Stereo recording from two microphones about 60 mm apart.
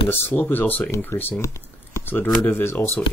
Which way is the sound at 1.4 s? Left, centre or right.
Left.